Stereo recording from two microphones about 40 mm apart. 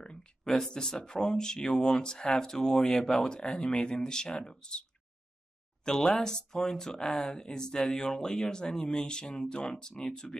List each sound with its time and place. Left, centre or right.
0.0 s a sound: left
0.7 s speech: centre
5.9 s speech: centre